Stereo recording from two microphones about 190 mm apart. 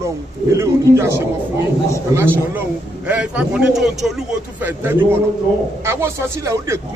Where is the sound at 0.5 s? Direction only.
15° right (ahead or behind).